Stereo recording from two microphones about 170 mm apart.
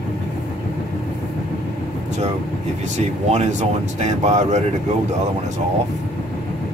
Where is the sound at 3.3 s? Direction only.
45° right (ahead or behind).